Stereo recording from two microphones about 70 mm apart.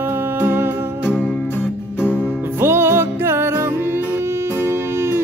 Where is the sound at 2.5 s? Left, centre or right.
Right.